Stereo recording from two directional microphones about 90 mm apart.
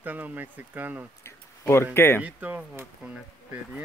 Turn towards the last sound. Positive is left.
turn(degrees=-15)  # may be behind; listen again after turning